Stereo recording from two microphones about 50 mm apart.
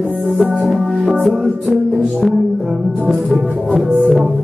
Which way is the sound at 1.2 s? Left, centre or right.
Centre.